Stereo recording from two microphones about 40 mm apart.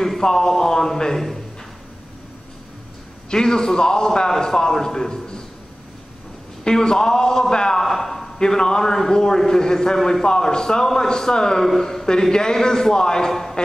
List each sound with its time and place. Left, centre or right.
0.0 s speech: centre
3.3 s a man's voice: centre
6.6 s a man's voice: centre
8.4 s a man's voice: centre